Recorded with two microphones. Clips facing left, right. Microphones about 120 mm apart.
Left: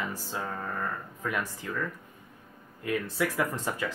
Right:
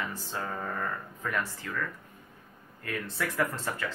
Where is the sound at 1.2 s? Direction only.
15° left (ahead or behind).